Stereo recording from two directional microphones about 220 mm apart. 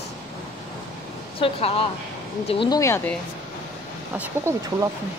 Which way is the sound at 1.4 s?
25° left (ahead or behind).